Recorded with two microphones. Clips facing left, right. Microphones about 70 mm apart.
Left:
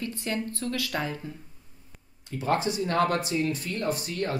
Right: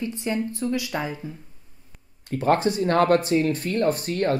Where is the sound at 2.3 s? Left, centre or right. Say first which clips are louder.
Right 6 dB; right.